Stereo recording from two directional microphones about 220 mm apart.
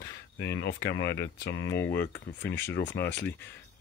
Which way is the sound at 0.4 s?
50° left (ahead or behind).